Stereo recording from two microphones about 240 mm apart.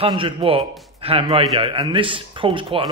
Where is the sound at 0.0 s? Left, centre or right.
Right.